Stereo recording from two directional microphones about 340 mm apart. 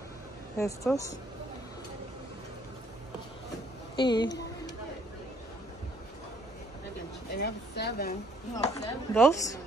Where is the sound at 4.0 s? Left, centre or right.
Centre.